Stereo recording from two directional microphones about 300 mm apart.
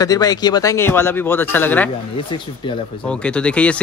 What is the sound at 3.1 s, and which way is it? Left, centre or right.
Speech, centre.